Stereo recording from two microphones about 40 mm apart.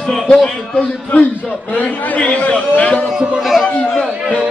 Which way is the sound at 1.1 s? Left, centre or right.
Left.